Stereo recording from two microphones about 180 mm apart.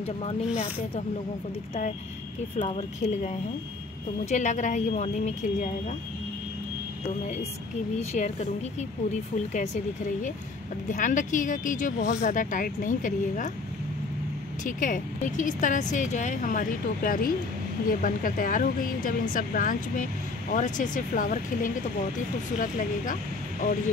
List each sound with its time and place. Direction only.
2.6 s speech: 35° left (ahead or behind)
4.3 s speech: 45° left (ahead or behind)
8.1 s speech: 40° left (ahead or behind)
10.9 s speech: 45° left (ahead or behind)
14.6 s speech: 45° left (ahead or behind)